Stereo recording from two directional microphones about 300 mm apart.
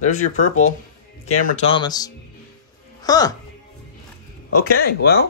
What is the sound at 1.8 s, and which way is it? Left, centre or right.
Speech, centre.